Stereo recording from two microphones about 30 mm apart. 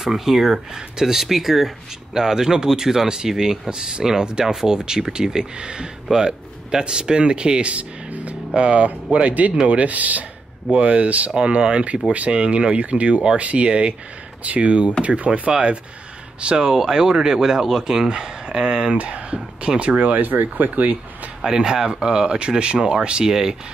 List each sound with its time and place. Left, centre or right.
0.0 s speech: centre
2.1 s speech: centre
8.1 s speech: right
8.5 s speech: right
8.8 s speech: right
11.3 s speech: right
13.7 s speech: right
14.4 s speech: right
16.5 s speech: centre
18.9 s speech: right
20.2 s speech: right
21.5 s speech: right
23.2 s speech: right